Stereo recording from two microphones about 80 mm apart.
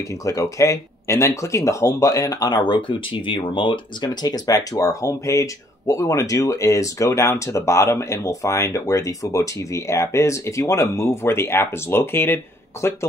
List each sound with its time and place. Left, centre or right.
0.2 s speech: left